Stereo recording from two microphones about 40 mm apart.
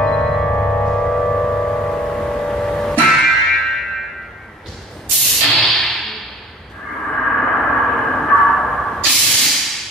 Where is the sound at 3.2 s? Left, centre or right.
Centre.